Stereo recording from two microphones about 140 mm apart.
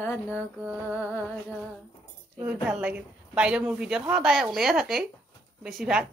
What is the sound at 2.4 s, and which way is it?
A woman's voice, 5° right (ahead or behind).